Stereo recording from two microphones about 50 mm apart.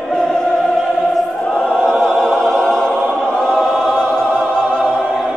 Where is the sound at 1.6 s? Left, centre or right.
Centre.